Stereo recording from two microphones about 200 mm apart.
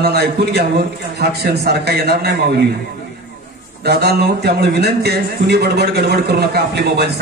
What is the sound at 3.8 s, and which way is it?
A man's voice, 55° right (ahead or behind).